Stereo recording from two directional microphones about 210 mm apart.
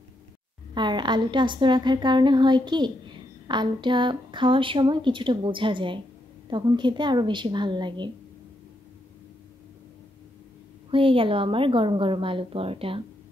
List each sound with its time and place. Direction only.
0.7 s a woman's voice: 20° right (ahead or behind)
10.9 s a woman's voice: 25° right (ahead or behind)